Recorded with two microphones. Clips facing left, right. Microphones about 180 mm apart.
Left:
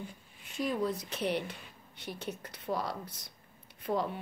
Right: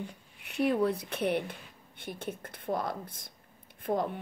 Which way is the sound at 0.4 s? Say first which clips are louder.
Right 5 dB; 65° right (ahead or behind).